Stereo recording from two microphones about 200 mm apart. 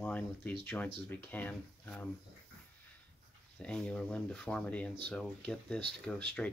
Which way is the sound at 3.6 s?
5° left (ahead or behind).